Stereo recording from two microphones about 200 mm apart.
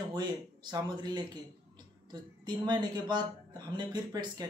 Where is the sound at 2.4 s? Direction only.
20° right (ahead or behind).